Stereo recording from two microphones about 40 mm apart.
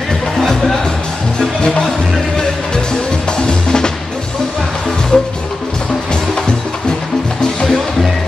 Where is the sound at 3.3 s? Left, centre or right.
Centre.